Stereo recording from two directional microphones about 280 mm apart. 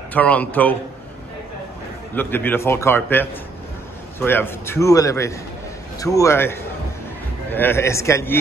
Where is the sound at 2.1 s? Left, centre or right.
Centre.